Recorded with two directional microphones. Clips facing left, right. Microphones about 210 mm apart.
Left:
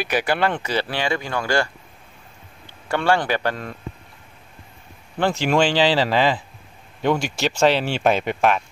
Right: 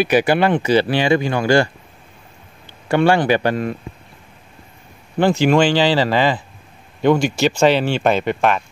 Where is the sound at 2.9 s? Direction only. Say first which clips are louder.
Right 6 dB; 15° right (ahead or behind).